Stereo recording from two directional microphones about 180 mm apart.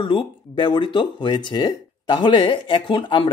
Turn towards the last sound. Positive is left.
turn(degrees=25)  # may be behind; listen again after turning